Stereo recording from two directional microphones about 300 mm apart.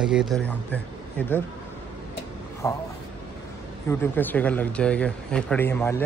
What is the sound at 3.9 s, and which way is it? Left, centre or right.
Speech, centre.